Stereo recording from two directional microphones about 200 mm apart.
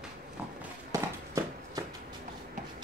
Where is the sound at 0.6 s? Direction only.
15° right (ahead or behind).